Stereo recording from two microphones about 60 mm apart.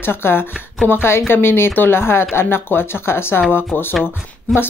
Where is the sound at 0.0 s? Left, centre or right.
Left.